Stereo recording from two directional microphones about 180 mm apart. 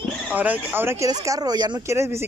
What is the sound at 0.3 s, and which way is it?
Speech, 10° right (ahead or behind).